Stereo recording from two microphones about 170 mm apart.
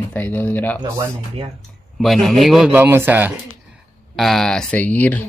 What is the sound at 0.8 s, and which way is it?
Speech, 15° right (ahead or behind).